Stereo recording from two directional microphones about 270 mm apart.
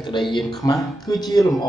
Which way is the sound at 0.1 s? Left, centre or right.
Centre.